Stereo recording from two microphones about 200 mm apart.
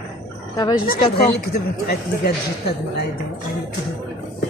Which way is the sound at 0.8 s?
50° left (ahead or behind).